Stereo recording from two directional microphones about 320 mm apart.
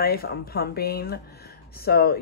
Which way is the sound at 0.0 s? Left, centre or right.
Left.